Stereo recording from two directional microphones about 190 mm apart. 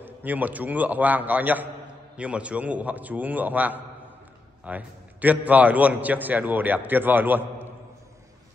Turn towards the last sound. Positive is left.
turn(degrees=-10)  # may be behind; listen again after turning